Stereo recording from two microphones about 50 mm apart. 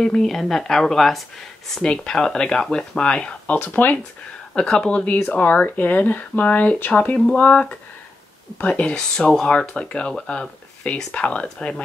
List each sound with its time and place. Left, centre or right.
0.0 s speech: centre
1.8 s speech: centre
3.7 s speech: left
4.6 s speech: centre
8.9 s speech: centre